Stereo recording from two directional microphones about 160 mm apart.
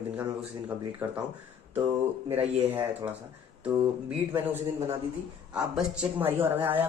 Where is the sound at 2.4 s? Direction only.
10° right (ahead or behind).